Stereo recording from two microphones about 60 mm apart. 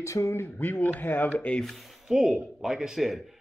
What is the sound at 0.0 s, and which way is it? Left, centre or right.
Speech, left.